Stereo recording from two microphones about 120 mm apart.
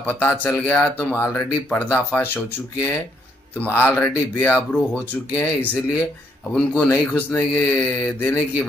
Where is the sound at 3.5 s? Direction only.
15° left (ahead or behind).